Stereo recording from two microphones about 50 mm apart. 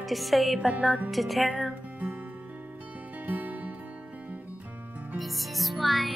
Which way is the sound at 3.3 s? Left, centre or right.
Right.